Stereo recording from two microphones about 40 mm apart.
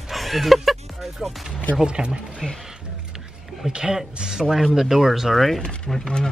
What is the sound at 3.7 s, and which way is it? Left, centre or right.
Speech, centre.